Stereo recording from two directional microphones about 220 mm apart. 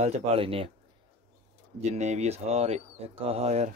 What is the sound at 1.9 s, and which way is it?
Speech, 30° right (ahead or behind).